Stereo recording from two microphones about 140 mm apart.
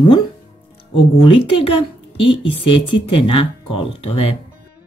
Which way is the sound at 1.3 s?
40° left (ahead or behind).